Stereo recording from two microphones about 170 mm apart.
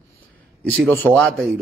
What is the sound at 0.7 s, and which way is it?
Speech, 10° left (ahead or behind).